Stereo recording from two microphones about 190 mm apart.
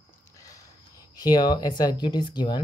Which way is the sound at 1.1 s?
20° left (ahead or behind).